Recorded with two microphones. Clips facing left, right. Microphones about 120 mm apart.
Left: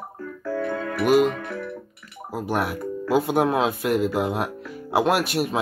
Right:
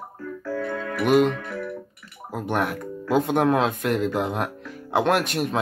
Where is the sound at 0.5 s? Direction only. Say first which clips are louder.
Left 2 dB; 20° left (ahead or behind).